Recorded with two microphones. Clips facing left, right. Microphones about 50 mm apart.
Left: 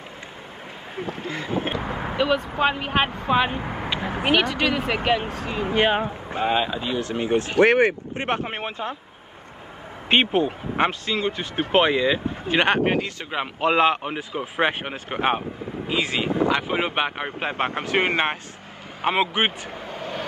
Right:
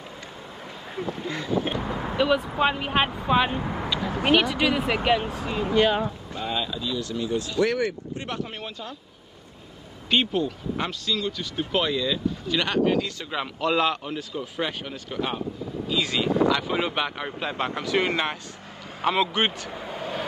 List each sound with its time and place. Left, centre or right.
0.9 s speech: left
2.1 s speech: centre
3.9 s a sound: left
4.3 s speech: centre
5.5 s speech: left
10.0 s speech: left
19.3 s speech: left
19.7 s vehicle: centre